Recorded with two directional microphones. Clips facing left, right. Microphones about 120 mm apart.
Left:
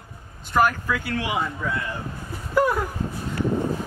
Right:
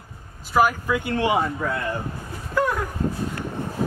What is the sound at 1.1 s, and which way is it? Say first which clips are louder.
Speech: right 7 dB; 35° right (ahead or behind).